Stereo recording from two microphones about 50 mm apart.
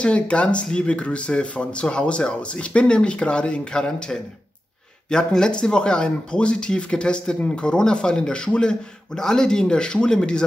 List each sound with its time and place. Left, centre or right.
0.0 s a man's voice: left